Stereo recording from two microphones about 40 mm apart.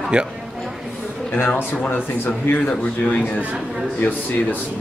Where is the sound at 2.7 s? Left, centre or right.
Left.